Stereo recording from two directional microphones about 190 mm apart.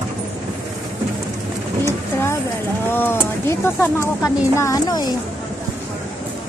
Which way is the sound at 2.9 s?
10° left (ahead or behind).